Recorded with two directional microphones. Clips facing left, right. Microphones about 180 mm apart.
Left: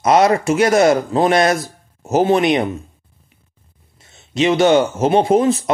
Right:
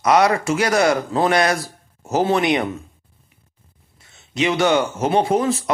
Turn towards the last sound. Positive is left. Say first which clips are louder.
# left 5 dB
turn(degrees=20)  # may be behind; listen again after turning